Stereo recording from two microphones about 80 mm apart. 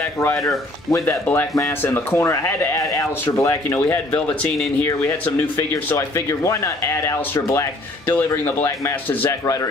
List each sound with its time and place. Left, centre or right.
0.2 s speech: left
2.8 s speech: left
4.1 s speech: centre
4.8 s speech: left
5.9 s speech: left
8.6 s speech: left